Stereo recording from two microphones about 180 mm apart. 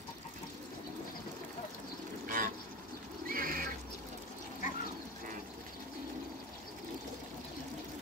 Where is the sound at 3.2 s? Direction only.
55° right (ahead or behind).